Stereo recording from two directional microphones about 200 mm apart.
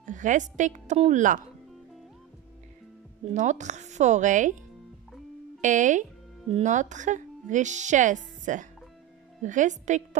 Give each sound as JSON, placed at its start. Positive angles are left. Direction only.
{"t": 0.0, "sound": "a woman's voice", "side_deg": -40}
{"t": 3.3, "sound": "speech", "side_deg": -35}
{"t": 5.6, "sound": "speech", "side_deg": -40}